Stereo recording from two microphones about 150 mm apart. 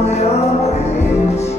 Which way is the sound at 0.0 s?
45° left (ahead or behind).